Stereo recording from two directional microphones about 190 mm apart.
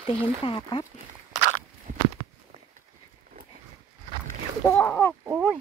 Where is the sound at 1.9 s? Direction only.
45° right (ahead or behind).